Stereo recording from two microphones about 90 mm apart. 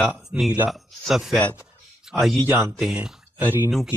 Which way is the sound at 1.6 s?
5° right (ahead or behind).